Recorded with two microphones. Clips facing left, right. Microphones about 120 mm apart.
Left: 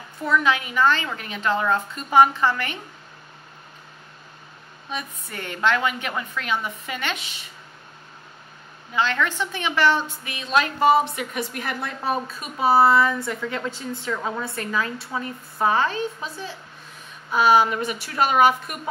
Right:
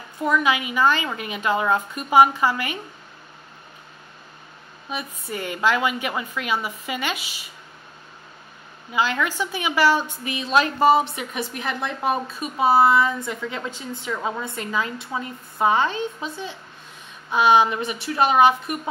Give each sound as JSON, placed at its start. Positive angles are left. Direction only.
{"t": 0.2, "sound": "a woman's voice", "side_deg": -15}
{"t": 4.8, "sound": "a woman's voice", "side_deg": -5}
{"t": 8.9, "sound": "a woman's voice", "side_deg": -10}
{"t": 10.2, "sound": "a woman's voice", "side_deg": -25}